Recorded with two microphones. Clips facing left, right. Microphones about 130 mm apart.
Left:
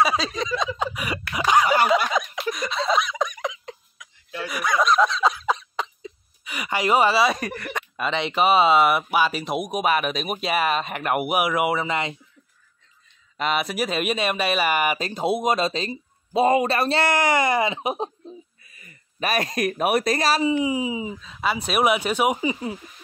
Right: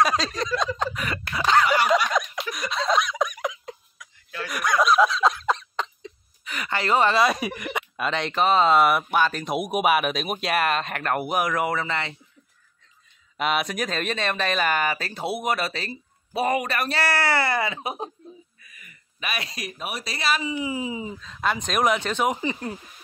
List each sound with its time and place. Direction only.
0.0 s speech: 5° left (ahead or behind)
0.7 s a sound: 10° left (ahead or behind)
1.9 s snicker: centre (ahead or behind)
2.5 s a sound: centre (ahead or behind)
4.5 s snicker: centre (ahead or behind)
7.4 s speech: 10° right (ahead or behind)
7.9 s speech: centre (ahead or behind); by 12.2 s 15° left (ahead or behind)
13.4 s speech: centre (ahead or behind); by 20.5 s 35° left (ahead or behind)
20.6 s speech: 15° left (ahead or behind)